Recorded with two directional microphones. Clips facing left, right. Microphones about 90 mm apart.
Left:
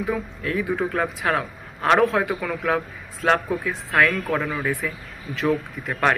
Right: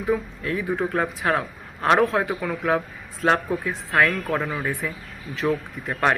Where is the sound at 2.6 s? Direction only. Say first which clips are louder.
Right 1 dB; 30° right (ahead or behind).